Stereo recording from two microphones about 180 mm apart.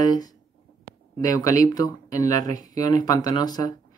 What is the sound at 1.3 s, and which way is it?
Speech, 20° left (ahead or behind).